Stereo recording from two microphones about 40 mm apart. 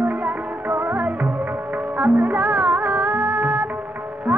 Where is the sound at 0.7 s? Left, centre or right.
Right.